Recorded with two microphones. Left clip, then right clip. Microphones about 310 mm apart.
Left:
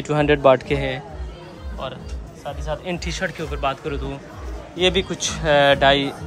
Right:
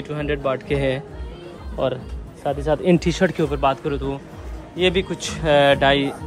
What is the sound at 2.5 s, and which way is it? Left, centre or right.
Speech, right.